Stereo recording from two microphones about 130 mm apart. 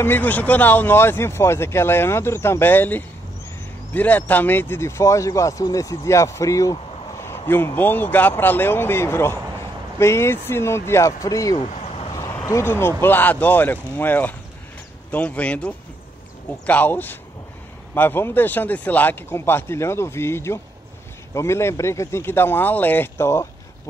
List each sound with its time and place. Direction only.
0.0 s speech: 15° left (ahead or behind)
11.6 s vehicle: 60° left (ahead or behind)
12.1 s vehicle: 25° left (ahead or behind)
12.4 s speech: 20° left (ahead or behind)